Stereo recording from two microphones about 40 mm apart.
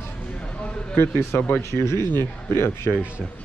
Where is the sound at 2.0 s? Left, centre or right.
Left.